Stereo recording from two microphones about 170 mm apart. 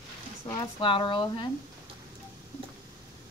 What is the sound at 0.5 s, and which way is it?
A woman's voice, 30° left (ahead or behind).